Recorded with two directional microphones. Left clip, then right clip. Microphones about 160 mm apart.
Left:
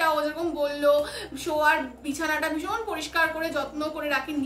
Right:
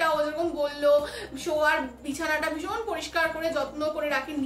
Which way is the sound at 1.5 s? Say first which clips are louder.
Left 2 dB; 20° left (ahead or behind).